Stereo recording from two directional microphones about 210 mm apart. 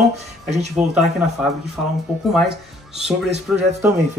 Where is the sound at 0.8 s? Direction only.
5° right (ahead or behind).